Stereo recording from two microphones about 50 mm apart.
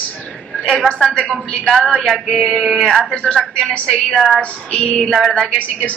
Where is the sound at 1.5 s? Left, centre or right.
Centre.